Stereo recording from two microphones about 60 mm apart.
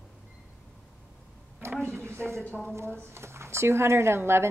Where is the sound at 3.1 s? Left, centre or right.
Right.